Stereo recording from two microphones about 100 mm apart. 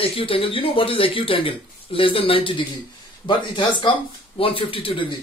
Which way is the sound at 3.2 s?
50° left (ahead or behind).